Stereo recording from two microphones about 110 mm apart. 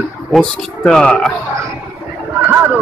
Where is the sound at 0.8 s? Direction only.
10° left (ahead or behind).